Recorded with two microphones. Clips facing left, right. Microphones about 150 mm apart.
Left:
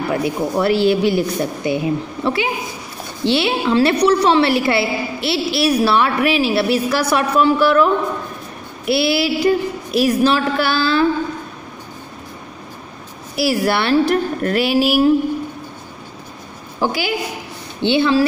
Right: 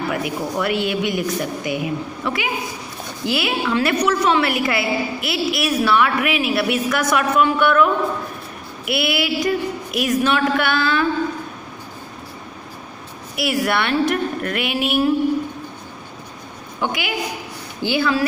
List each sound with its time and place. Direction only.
0.1 s a woman's voice: 30° left (ahead or behind)
13.4 s a woman's voice: 30° left (ahead or behind)
16.8 s a woman's voice: 35° left (ahead or behind)